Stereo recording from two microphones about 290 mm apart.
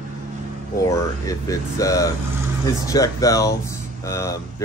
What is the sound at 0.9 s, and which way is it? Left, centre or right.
Speech, centre.